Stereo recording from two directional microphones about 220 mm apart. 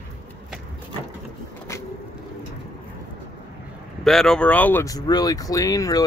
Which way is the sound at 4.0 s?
Centre (ahead or behind).